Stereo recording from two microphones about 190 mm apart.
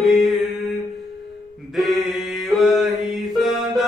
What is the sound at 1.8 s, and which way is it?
Music, centre (ahead or behind).